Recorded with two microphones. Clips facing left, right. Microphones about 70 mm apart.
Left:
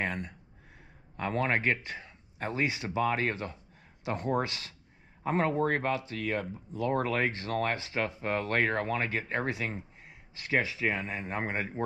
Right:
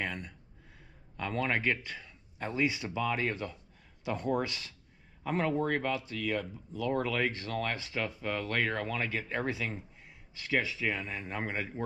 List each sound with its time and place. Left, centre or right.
0.0 s speech: left